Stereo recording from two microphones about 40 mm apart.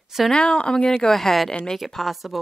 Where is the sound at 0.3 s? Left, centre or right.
Left.